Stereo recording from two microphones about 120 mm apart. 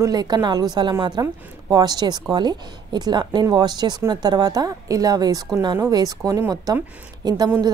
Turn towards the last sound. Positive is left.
turn(degrees=-35)  # may be behind; listen again after turning